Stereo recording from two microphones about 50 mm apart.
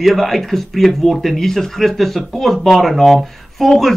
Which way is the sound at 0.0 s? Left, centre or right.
Centre.